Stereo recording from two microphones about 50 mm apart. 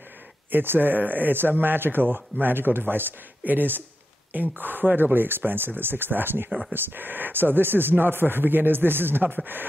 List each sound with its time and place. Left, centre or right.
0.5 s speech: right